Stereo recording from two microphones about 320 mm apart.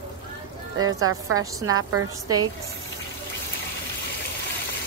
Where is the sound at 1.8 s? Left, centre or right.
Right.